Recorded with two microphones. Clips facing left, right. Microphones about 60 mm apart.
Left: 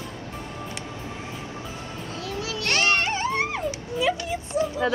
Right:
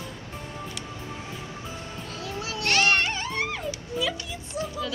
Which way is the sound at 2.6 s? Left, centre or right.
Left.